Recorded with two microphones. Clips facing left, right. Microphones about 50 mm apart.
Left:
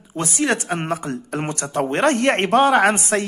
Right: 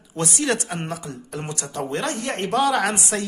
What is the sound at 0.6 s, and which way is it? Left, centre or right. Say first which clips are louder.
Speech: left 6 dB; left.